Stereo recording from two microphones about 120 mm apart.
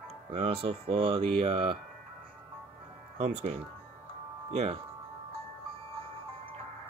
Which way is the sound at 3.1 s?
65° right (ahead or behind).